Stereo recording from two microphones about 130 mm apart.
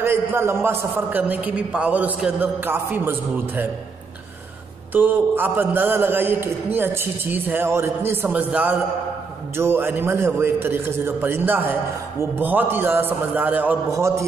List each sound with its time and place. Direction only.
0.0 s a man's voice: 20° right (ahead or behind)
4.9 s a man's voice: 15° right (ahead or behind)
13.9 s a man's voice: 20° right (ahead or behind)